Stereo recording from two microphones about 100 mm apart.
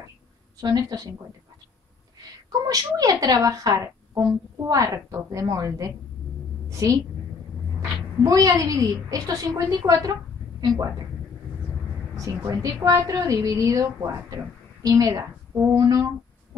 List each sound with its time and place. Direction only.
0.6 s a woman's voice: 40° right (ahead or behind)
2.6 s a woman's voice: 40° right (ahead or behind)
8.2 s a woman's voice: 35° right (ahead or behind)
12.4 s a woman's voice: 35° right (ahead or behind)
15.7 s a woman's voice: 40° right (ahead or behind)